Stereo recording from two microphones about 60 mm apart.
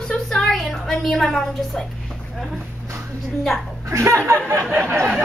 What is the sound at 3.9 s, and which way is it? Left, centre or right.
Speech, right.